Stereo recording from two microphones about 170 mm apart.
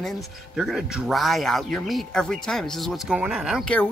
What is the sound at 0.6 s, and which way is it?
Speech, 5° right (ahead or behind).